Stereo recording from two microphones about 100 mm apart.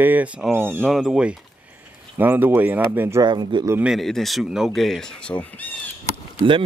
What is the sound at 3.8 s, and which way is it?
Speech, centre (ahead or behind).